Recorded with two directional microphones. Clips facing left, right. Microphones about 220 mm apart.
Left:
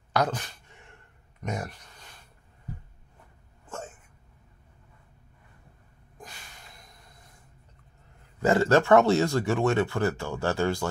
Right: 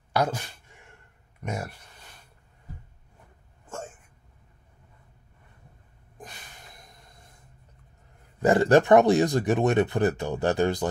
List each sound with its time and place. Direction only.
0.1 s speech: 10° right (ahead or behind)
1.4 s speech: 10° right (ahead or behind)
6.1 s a sound: 20° right (ahead or behind)
8.4 s speech: 15° right (ahead or behind)